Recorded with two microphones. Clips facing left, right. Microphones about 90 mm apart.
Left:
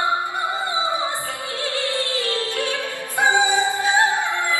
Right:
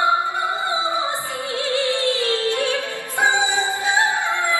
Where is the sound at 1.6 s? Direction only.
20° right (ahead or behind).